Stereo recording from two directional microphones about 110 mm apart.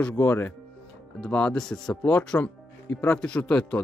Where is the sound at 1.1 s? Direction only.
10° left (ahead or behind).